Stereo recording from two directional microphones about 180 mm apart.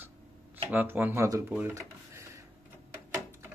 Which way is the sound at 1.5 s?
15° right (ahead or behind).